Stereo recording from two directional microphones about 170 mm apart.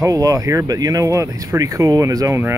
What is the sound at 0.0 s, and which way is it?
Speech, 20° right (ahead or behind).